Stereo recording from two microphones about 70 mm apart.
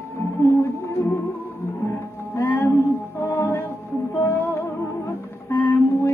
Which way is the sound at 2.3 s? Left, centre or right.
Left.